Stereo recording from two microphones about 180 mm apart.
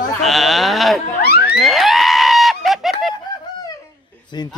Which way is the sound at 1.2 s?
60° left (ahead or behind).